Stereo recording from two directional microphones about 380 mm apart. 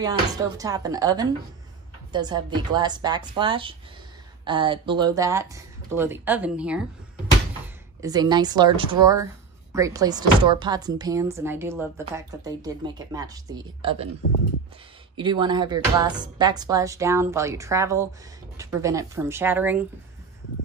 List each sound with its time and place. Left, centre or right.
0.0 s speech: centre
8.0 s speech: centre
14.2 s speech: left
15.1 s speech: centre